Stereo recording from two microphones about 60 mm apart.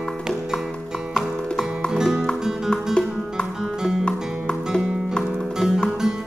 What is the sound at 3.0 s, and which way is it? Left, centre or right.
Music, centre.